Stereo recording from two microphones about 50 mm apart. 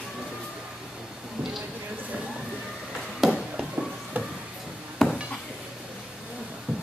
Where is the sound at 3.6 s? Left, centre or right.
Centre.